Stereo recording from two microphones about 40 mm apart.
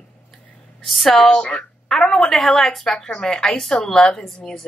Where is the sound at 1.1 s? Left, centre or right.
Centre.